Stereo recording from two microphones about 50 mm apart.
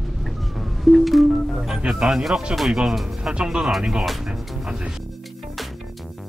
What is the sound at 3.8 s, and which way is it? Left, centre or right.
Music, centre.